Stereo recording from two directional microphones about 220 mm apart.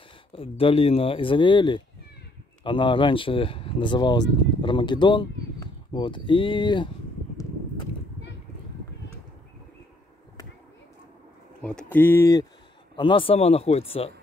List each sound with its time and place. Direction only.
0.3 s speech: 25° left (ahead or behind)
11.6 s speech: 5° left (ahead or behind); by 14.1 s 25° left (ahead or behind)